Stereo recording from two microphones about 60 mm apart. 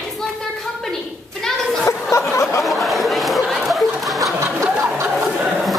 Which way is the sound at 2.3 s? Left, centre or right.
Left.